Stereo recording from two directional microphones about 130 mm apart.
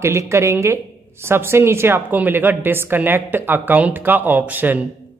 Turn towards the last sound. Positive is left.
turn(degrees=-15)  # may be behind; listen again after turning